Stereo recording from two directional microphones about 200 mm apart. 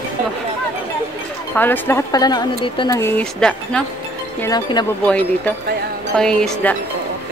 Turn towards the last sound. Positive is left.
turn(degrees=5)  # may be behind; listen again after turning